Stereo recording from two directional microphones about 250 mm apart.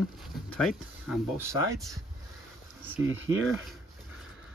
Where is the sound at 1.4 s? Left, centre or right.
Centre.